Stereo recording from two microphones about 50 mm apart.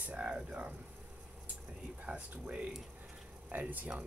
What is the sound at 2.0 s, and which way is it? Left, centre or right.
Speech, right.